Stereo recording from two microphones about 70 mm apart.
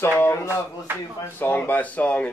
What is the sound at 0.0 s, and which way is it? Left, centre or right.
Speech, left.